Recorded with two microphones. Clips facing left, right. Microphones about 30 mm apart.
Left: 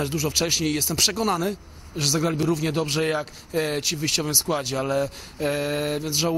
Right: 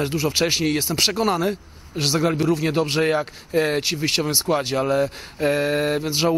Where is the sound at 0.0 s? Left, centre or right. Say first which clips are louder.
Right 3 dB; right.